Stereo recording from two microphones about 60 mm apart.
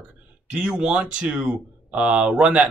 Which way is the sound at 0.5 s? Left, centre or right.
Centre.